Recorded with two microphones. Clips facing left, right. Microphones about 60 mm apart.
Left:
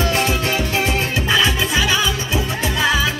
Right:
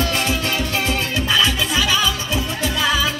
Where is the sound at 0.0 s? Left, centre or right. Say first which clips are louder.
Left 2 dB; centre.